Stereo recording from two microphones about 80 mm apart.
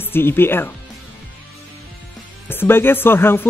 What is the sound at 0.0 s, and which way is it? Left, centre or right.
Speech, left.